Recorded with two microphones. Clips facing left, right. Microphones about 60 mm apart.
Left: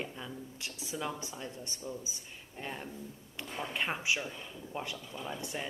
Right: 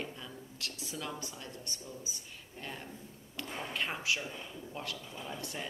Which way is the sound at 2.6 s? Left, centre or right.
Centre.